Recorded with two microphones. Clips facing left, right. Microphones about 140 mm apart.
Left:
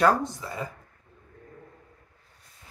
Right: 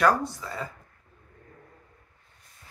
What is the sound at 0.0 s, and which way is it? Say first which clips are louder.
Speech: left 1 dB; 20° left (ahead or behind).